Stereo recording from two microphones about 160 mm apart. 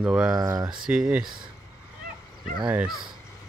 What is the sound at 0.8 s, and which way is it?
Speech, 5° right (ahead or behind).